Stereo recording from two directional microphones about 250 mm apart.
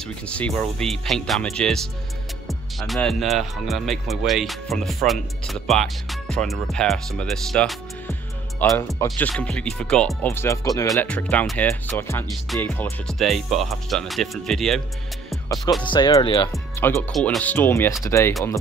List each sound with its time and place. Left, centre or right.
0.3 s speech: centre
15.4 s music: centre
15.8 s speech: centre
16.5 s speech: centre